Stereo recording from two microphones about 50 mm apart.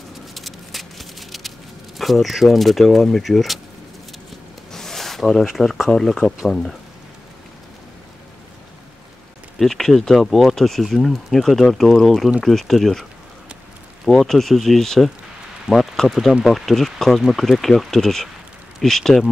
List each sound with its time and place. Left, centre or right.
0.3 s patter: centre
2.0 s speech: centre
4.7 s zipper: centre
5.9 s speech: centre
9.6 s speech: centre
14.0 s speech: centre
15.7 s speech: centre
16.1 s speech: centre